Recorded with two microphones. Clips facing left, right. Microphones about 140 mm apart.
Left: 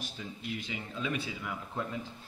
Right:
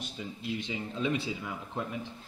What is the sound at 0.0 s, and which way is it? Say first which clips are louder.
Speech: right 2 dB; 25° right (ahead or behind).